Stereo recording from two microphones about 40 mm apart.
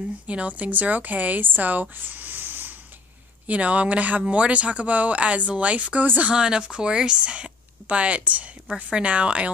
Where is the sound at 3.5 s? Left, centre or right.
Right.